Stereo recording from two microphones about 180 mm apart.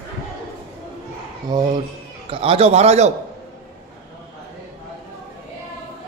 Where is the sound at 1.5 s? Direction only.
25° right (ahead or behind).